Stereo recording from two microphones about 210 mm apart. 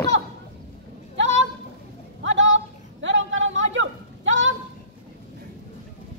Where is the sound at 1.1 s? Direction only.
60° right (ahead or behind).